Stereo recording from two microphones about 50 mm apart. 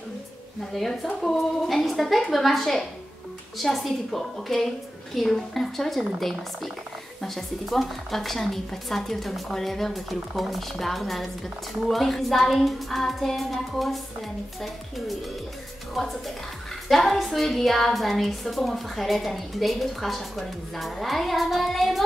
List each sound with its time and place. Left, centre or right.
1.2 s a woman's voice: centre